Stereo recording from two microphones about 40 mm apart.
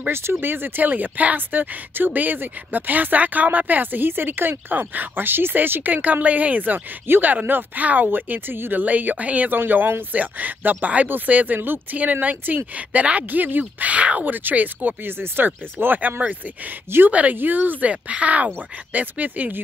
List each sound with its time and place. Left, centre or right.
0.1 s speech: right
7.8 s speech: right
8.1 s speech: right
8.8 s speech: right
13.3 s speech: right
14.2 s speech: right
15.1 s speech: right
17.1 s speech: right
17.4 s speech: right
17.8 s speech: right